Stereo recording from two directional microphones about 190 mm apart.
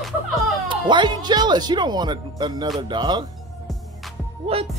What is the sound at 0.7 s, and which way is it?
Speech, 25° right (ahead or behind).